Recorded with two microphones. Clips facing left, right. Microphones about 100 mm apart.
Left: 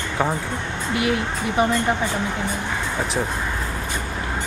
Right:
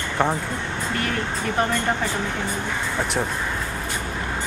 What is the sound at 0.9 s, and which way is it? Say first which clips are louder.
Speech: left 5 dB; 10° left (ahead or behind).